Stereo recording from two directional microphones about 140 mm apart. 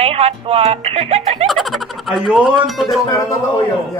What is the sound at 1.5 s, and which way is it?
Fowl, centre (ahead or behind).